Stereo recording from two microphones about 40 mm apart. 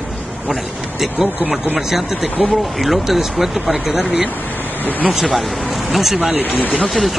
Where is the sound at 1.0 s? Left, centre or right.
Centre.